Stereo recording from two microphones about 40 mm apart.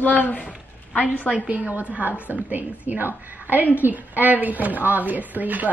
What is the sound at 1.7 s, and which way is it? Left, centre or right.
A woman's voice, right.